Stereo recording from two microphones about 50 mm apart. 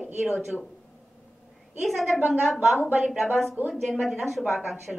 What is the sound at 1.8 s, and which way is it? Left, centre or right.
A woman's voice, centre.